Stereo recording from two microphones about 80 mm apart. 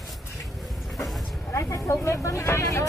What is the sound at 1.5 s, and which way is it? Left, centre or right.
Vehicle, left.